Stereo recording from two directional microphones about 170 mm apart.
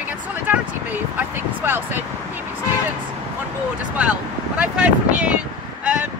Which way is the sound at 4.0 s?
5° right (ahead or behind).